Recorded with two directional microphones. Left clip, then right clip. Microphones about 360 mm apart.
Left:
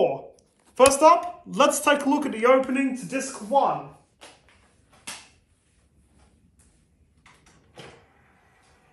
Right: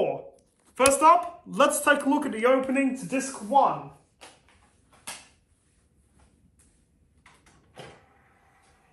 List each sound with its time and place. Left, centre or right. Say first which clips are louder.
0.0 s speech: left 4 dB; centre
3.5 s speech: even; centre
4.2 s a sound: left 1 dB; centre
7.3 s mechanisms: even; centre